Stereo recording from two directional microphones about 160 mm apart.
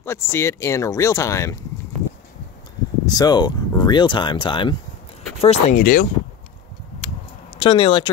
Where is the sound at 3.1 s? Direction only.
25° left (ahead or behind).